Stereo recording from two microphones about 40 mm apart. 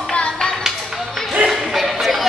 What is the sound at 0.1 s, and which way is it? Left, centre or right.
Music, left.